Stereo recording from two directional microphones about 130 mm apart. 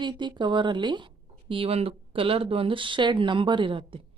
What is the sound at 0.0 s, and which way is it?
A woman's voice, 35° right (ahead or behind).